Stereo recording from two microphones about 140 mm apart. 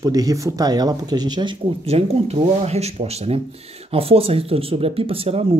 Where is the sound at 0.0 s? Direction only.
25° right (ahead or behind).